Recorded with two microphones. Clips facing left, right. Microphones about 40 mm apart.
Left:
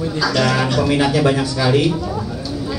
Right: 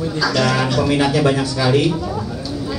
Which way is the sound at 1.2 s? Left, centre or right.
Centre.